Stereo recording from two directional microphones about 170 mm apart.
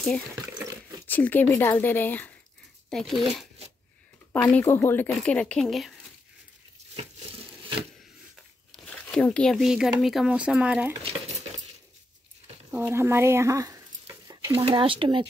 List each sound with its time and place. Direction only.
1.0 s a woman's voice: 10° left (ahead or behind)
8.7 s speech: 5° left (ahead or behind)
12.7 s a sound: 10° right (ahead or behind)
14.5 s speech: 30° right (ahead or behind)